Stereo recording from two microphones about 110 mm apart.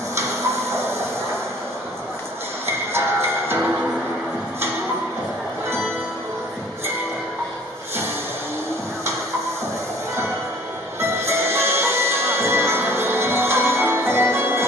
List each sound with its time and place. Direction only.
2.6 s music: 20° right (ahead or behind)
11.0 s music: 25° right (ahead or behind)